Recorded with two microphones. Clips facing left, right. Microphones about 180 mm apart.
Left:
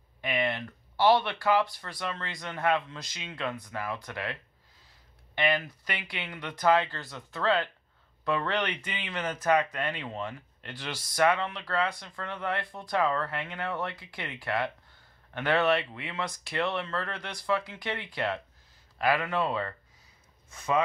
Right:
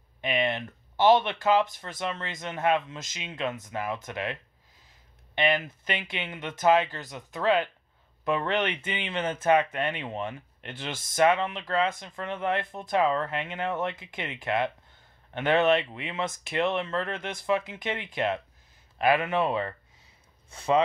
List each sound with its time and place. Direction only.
0.2 s speech: 20° right (ahead or behind)
20.4 s speech: 30° right (ahead or behind)